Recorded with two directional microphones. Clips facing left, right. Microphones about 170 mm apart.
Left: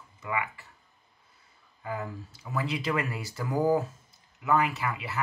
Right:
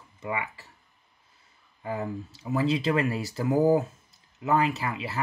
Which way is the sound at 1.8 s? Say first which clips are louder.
Right 4 dB; 30° right (ahead or behind).